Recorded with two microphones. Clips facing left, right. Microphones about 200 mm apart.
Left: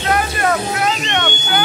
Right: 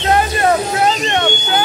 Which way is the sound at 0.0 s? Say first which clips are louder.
Right 3 dB; 30° right (ahead or behind).